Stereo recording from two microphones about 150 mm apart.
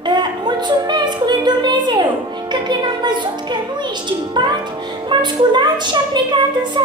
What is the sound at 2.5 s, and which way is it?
Child singing, 30° right (ahead or behind).